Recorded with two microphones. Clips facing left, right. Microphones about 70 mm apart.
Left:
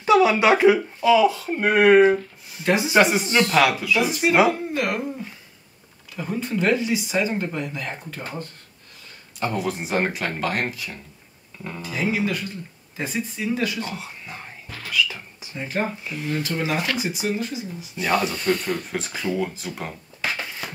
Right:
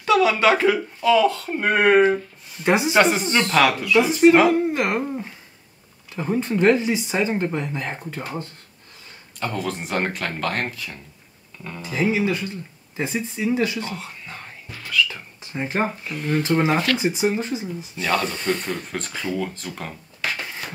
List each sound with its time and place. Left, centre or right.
0.0 s speech: centre
2.6 s speech: centre
3.0 s speech: centre
4.5 s speech: right
9.4 s speech: centre
11.8 s speech: right
13.7 s speech: centre
15.5 s speech: right
16.0 s speech: centre
16.4 s speech: right
17.9 s speech: centre